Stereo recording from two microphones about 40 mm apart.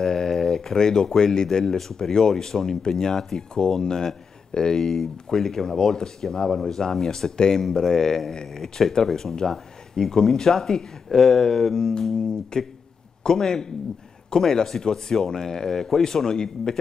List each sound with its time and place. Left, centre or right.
0.0 s speech: centre